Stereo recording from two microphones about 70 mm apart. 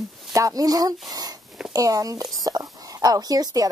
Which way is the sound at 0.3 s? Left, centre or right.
Right.